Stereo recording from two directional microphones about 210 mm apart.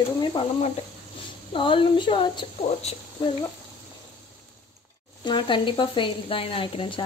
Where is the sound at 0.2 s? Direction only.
25° left (ahead or behind).